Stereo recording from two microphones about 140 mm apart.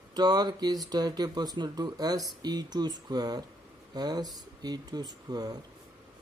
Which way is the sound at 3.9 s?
30° right (ahead or behind).